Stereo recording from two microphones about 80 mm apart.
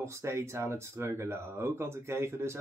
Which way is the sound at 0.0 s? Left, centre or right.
Right.